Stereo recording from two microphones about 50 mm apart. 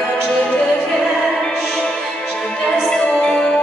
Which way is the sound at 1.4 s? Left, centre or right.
Centre.